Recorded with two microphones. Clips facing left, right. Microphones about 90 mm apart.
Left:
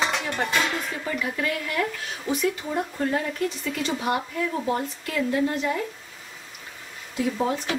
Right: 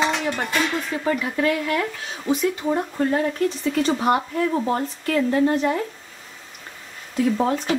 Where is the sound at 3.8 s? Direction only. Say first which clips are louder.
Right 6 dB; 45° right (ahead or behind).